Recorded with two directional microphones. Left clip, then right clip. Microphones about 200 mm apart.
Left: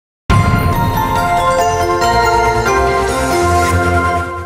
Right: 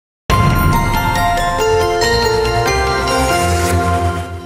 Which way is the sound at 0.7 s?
Centre (ahead or behind).